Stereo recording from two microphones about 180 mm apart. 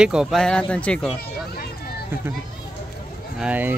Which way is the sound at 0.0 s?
5° right (ahead or behind).